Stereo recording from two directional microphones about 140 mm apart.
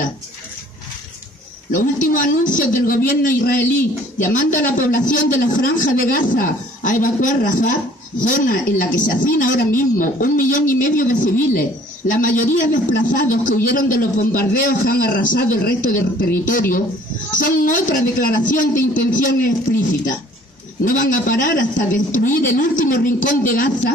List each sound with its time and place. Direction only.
1.7 s a man's voice: 70° left (ahead or behind)
3.1 s a man's voice: 85° left
3.7 s a man's voice: 75° left (ahead or behind)
20.8 s a man's voice: 75° left (ahead or behind)